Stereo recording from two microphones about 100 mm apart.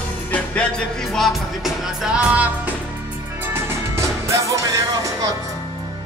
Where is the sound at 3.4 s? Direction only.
25° right (ahead or behind).